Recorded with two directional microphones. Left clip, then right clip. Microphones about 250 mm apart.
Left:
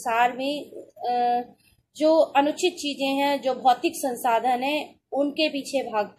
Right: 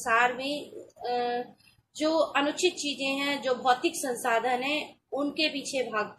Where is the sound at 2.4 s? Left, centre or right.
Left.